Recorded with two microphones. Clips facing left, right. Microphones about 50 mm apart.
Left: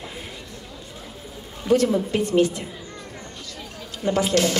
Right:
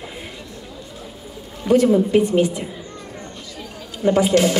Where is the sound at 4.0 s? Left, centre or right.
Centre.